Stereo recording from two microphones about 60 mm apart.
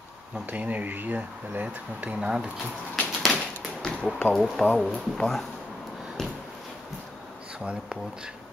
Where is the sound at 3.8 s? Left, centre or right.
Centre.